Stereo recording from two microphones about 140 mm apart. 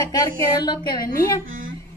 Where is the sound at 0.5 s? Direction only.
30° left (ahead or behind).